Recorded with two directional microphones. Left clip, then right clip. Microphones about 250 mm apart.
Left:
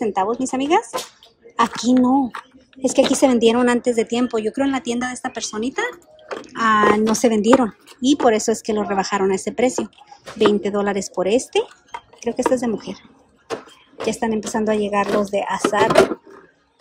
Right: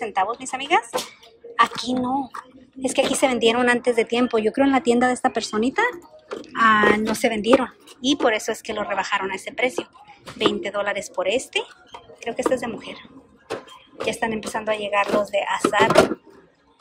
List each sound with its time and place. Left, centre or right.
0.0 s speech: centre
10.4 s speech: left
14.0 s speech: centre
15.9 s speech: centre